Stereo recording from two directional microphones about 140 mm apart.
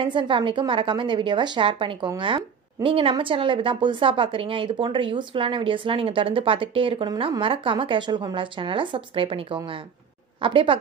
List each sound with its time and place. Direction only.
0.0 s a woman's voice: 35° right (ahead or behind)